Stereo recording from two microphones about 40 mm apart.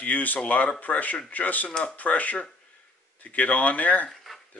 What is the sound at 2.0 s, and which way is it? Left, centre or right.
Speech, left.